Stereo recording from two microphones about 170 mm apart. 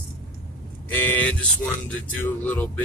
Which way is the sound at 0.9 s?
10° left (ahead or behind).